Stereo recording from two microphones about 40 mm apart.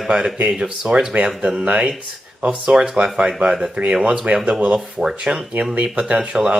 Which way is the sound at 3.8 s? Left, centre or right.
Right.